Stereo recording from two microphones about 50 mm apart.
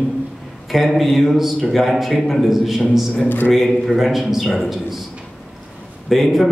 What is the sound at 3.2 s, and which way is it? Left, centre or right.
Speech, left.